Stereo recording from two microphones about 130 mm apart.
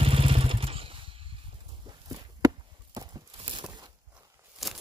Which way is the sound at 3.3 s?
45° right (ahead or behind).